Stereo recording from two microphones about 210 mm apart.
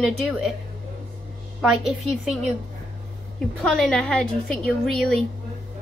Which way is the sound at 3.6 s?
5° left (ahead or behind).